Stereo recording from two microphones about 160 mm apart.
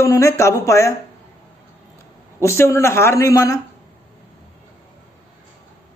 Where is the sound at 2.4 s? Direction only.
15° left (ahead or behind).